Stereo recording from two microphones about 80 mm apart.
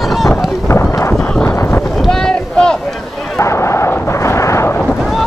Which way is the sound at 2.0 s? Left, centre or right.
Centre.